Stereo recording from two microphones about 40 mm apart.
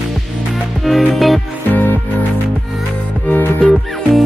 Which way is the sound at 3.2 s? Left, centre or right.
Left.